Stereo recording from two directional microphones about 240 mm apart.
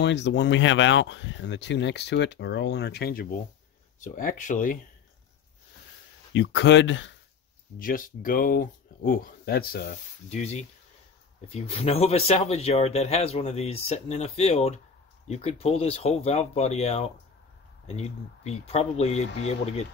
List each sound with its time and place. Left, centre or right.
0.0 s speech: left
6.3 s speech: left
7.8 s speech: left